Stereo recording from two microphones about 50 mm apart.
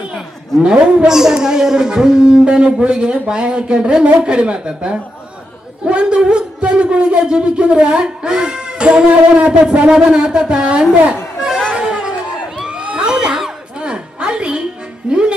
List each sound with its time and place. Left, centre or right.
0.6 s a man's voice: centre
11.7 s music: centre
12.6 s a sound: centre